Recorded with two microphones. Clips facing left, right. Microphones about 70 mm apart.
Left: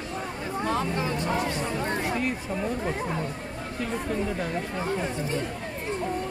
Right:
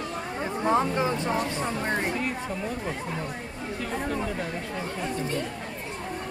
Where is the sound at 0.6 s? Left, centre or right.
Right.